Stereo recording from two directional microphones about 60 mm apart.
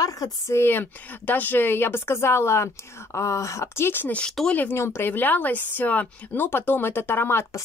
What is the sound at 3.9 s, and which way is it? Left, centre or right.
Speech, left.